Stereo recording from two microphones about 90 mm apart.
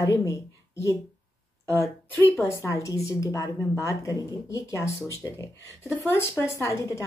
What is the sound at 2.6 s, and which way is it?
Speech, 35° left (ahead or behind).